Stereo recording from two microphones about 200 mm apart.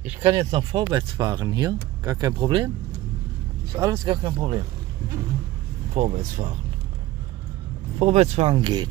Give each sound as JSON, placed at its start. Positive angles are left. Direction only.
{"t": 0.3, "sound": "speech", "side_deg": -20}
{"t": 3.7, "sound": "speech", "side_deg": -15}
{"t": 5.9, "sound": "speech", "side_deg": -35}
{"t": 8.0, "sound": "speech", "side_deg": -30}